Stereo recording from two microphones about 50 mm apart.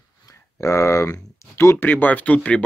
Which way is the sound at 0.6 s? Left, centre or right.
Left.